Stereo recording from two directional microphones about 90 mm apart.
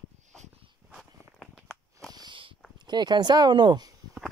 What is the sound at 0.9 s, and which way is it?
Walk, 5° left (ahead or behind).